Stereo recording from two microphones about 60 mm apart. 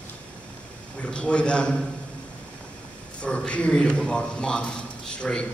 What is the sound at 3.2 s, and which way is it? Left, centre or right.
A man's voice, centre.